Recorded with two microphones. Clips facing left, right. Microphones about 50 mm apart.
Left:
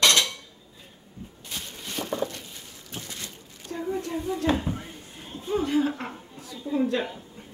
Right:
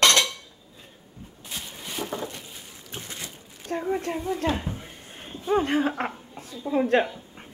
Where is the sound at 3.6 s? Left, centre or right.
Right.